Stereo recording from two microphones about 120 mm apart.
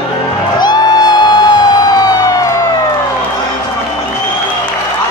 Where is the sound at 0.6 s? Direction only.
35° left (ahead or behind).